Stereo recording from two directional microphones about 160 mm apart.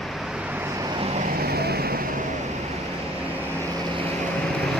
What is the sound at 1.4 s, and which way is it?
Vehicle, 80° right.